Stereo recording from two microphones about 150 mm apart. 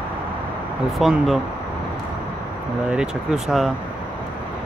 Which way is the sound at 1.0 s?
Centre (ahead or behind).